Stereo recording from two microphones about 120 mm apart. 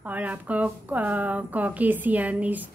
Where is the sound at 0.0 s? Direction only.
15° right (ahead or behind).